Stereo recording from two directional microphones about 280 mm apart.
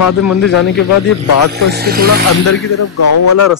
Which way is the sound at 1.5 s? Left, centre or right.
Right.